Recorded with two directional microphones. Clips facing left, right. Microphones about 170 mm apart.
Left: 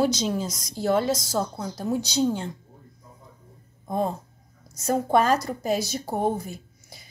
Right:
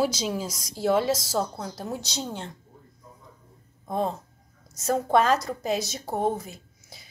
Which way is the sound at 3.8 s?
5° left (ahead or behind).